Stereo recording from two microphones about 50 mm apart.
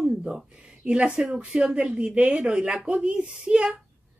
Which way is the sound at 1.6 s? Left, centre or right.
Centre.